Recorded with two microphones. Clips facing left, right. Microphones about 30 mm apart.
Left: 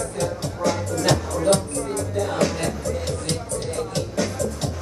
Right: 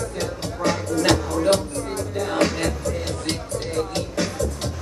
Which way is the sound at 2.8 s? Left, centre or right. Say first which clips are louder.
Even; centre.